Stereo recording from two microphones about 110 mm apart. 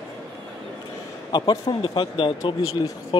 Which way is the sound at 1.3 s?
45° left (ahead or behind).